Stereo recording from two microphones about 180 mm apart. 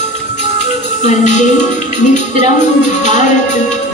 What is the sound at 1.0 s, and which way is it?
Music, 40° left (ahead or behind).